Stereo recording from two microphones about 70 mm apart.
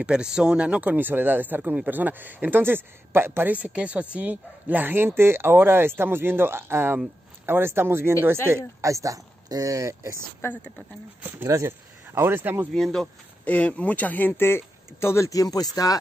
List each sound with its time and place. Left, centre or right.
0.0 s speech: centre; by 3.5 s right
3.5 s speech: centre; by 10.2 s right
10.5 s speech: centre
11.4 s speech: right
12.7 s speech: centre
13.5 s speech: left